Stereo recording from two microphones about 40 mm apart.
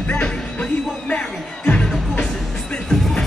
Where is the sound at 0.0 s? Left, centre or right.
Left.